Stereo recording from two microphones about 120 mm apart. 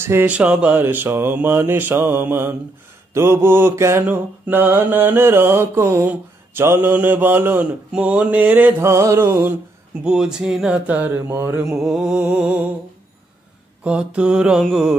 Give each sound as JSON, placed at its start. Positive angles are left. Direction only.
{"t": 0.0, "sound": "mantra", "side_deg": -20}
{"t": 10.0, "sound": "mantra", "side_deg": -5}
{"t": 11.8, "sound": "mantra", "side_deg": 0}
{"t": 13.8, "sound": "mantra", "side_deg": -10}
{"t": 14.6, "sound": "music", "side_deg": 0}